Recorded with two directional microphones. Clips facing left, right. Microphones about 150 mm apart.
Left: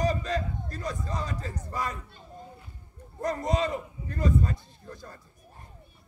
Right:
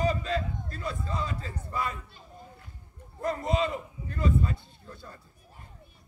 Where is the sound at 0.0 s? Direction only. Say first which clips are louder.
Even; 40° left (ahead or behind).